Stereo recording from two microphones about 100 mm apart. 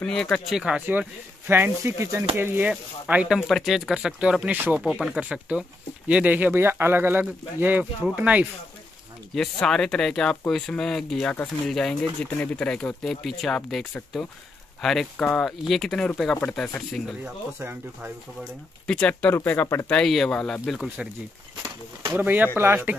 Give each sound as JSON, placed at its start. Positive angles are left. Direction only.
{"t": 0.0, "sound": "speech", "side_deg": 5}
{"t": 0.6, "sound": "speech", "side_deg": -5}
{"t": 1.5, "sound": "speech", "side_deg": -25}
{"t": 2.7, "sound": "speech", "side_deg": -10}
{"t": 9.3, "sound": "speech", "side_deg": 5}
{"t": 17.6, "sound": "speech", "side_deg": -20}
{"t": 18.4, "sound": "speech", "side_deg": 10}
{"t": 19.9, "sound": "speech", "side_deg": 5}
{"t": 22.1, "sound": "speech", "side_deg": -20}